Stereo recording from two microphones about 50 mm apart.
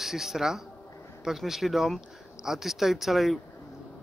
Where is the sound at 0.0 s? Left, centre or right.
Centre.